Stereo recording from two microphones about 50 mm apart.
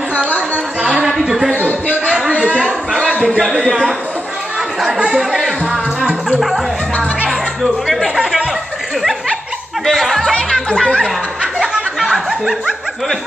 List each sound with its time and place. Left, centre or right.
0.8 s a sound: centre
1.9 s a sound: right
2.4 s a man's voice: left
4.7 s speech: centre
7.2 s speech: centre
8.2 s speech: centre
9.8 s speech: centre
10.5 s speech: centre
11.6 s snicker: centre